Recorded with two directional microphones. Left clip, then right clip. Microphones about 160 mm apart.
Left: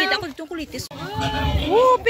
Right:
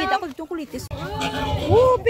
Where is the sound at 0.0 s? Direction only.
50° right (ahead or behind).